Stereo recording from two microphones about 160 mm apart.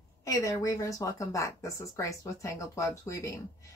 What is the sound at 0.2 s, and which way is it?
Speech, 20° left (ahead or behind).